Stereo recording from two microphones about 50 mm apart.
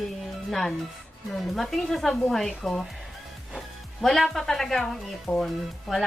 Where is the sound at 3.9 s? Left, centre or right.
Centre.